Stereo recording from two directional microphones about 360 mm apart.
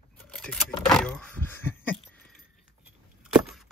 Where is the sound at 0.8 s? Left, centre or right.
Centre.